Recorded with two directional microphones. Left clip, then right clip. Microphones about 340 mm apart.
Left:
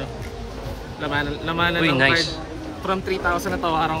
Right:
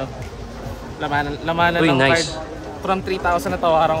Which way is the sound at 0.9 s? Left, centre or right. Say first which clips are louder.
Right 3 dB; centre.